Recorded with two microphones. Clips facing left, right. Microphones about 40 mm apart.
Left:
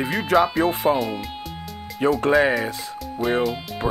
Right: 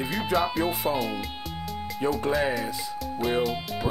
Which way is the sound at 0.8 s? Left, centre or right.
Left.